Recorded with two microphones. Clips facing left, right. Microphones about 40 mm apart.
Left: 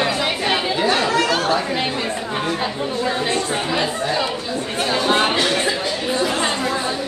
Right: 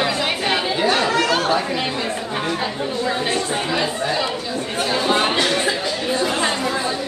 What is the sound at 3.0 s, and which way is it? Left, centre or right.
Speech, left.